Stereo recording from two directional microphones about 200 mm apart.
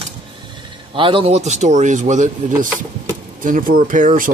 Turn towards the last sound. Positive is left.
turn(degrees=-40)  # may be behind; listen again after turning